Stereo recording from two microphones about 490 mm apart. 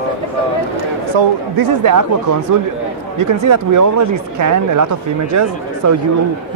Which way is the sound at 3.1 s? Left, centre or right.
Right.